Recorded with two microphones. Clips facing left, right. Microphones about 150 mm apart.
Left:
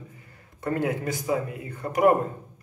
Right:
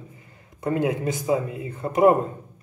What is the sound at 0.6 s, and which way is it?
Speech, 20° right (ahead or behind).